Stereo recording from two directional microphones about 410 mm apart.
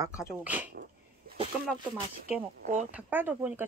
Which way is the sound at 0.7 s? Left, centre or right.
Right.